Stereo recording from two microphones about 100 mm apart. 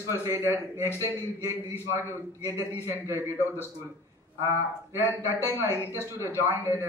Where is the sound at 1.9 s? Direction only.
25° right (ahead or behind).